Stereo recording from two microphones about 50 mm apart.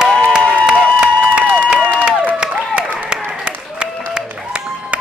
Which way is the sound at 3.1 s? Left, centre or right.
Centre.